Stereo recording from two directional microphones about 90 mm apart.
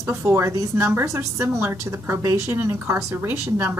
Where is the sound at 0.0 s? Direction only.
30° right (ahead or behind).